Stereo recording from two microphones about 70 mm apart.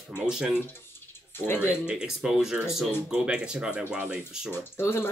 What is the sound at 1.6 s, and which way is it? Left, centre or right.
Speech, centre.